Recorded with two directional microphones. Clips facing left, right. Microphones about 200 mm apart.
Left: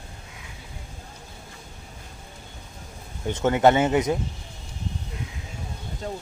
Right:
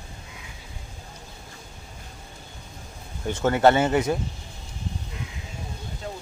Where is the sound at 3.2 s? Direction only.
20° left (ahead or behind).